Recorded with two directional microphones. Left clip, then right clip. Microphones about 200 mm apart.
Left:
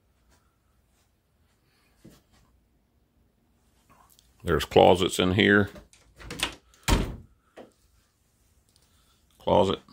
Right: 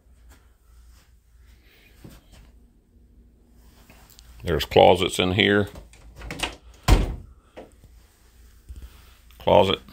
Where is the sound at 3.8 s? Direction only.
25° left (ahead or behind).